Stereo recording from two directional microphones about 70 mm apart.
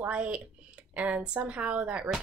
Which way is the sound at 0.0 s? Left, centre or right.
Centre.